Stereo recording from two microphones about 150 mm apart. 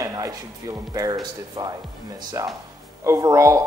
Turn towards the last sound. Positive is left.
turn(degrees=-20)  # may be behind; listen again after turning